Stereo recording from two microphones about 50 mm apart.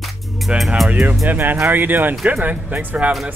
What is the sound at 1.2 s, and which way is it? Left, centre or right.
Speech, right.